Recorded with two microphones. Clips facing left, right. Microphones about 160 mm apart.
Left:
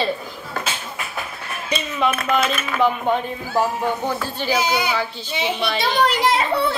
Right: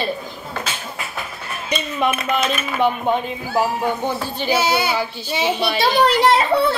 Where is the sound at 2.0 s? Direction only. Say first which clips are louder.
Left 1 dB; 5° right (ahead or behind).